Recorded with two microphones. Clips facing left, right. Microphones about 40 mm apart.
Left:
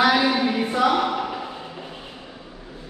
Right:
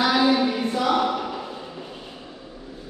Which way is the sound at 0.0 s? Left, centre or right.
Left.